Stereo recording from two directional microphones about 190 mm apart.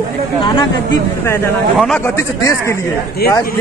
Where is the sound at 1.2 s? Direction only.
15° left (ahead or behind).